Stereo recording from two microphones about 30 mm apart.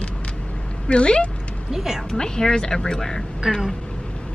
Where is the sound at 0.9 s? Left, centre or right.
Left.